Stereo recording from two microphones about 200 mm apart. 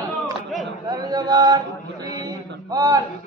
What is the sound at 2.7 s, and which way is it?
Speech, 20° right (ahead or behind).